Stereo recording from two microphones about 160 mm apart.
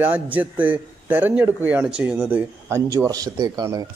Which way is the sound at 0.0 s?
10° right (ahead or behind).